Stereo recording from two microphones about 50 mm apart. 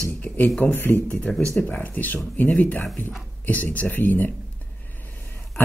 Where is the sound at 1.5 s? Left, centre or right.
Left.